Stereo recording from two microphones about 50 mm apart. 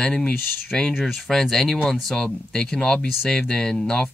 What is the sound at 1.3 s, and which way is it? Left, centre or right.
Speech, centre.